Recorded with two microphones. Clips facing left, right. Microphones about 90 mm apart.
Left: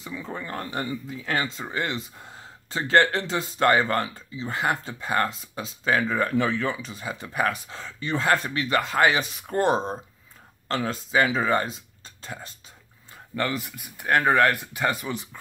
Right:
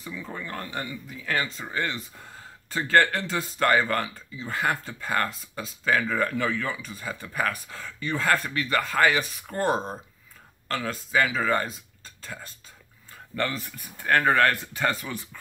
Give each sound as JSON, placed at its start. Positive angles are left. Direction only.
{"t": 0.0, "sound": "speech", "side_deg": 25}
{"t": 13.4, "sound": "speech", "side_deg": 15}